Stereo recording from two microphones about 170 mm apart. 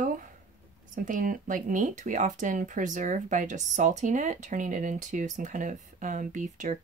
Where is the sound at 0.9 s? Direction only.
50° right (ahead or behind).